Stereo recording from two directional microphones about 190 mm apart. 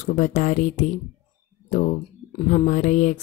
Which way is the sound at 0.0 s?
40° left (ahead or behind).